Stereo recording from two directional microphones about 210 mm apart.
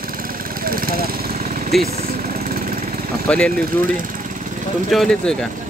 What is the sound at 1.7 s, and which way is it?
Speech, centre (ahead or behind).